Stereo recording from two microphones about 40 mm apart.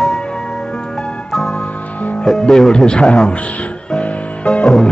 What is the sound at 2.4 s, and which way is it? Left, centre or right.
Speech, centre.